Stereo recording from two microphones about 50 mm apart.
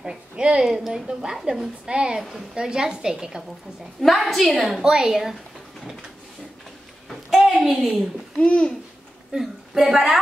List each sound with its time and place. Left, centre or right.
0.0 s a woman's voice: centre
0.7 s a woman's voice: centre
4.0 s a woman's voice: centre
4.8 s a woman's voice: centre
7.1 s a sound: centre
8.4 s a child's voice: left
9.3 s a woman's voice: centre